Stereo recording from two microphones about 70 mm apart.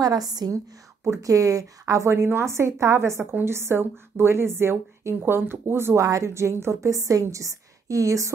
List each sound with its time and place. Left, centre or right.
0.0 s a woman's voice: right
1.0 s a woman's voice: right
6.0 s a woman's voice: right